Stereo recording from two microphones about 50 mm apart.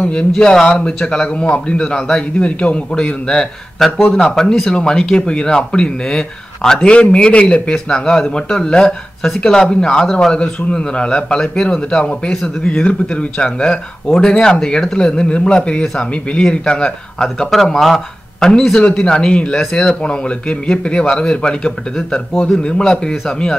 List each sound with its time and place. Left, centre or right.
0.0 s speech: left
0.3 s a man's voice: centre
17.5 s a man's voice: centre